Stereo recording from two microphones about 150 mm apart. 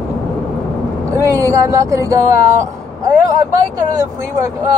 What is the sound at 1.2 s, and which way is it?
Speech, 20° right (ahead or behind).